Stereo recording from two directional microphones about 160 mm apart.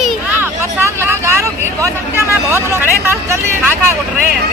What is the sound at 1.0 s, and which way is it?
Speech, 15° right (ahead or behind).